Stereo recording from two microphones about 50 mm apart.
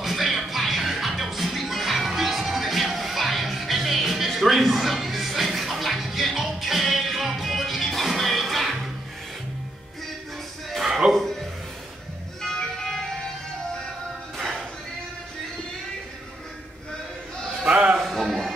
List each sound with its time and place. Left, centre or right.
0.0 s music: centre
10.7 s a sound: centre
12.4 s music: centre
17.6 s music: right
17.9 s music: centre